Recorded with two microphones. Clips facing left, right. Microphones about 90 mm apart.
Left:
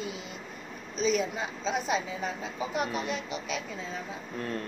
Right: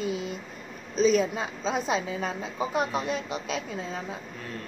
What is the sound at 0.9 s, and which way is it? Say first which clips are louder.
A woman's voice: right 5 dB; 40° right (ahead or behind).